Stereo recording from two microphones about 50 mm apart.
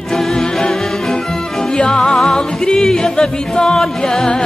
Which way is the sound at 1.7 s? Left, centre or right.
Centre.